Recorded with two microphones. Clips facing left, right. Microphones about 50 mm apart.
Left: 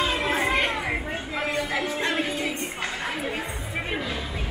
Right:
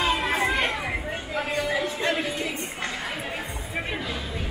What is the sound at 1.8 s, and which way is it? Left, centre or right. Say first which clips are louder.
Music: even; left.